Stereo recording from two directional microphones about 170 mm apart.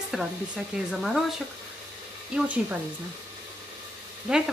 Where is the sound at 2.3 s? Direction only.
10° right (ahead or behind).